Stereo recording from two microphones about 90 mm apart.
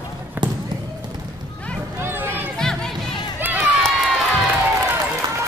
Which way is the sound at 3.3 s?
20° right (ahead or behind).